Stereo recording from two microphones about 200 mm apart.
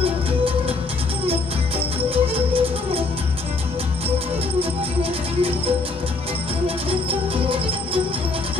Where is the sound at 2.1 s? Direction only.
30° right (ahead or behind).